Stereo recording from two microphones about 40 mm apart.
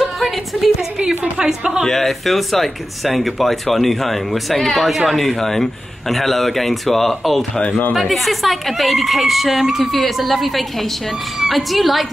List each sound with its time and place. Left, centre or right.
0.0 s a sound: centre
0.9 s a woman's voice: right
1.4 s a woman's voice: centre
1.9 s speech: centre